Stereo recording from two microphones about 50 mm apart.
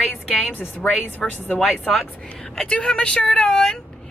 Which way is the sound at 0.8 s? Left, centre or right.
Left.